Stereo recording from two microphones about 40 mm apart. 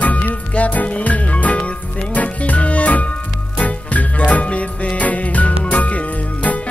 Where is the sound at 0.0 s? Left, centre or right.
Left.